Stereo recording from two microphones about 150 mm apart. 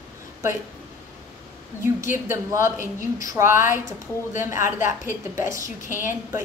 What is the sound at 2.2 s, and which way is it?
A woman's voice, 20° right (ahead or behind).